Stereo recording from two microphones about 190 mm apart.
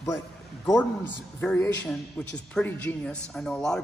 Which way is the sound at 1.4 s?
10° left (ahead or behind).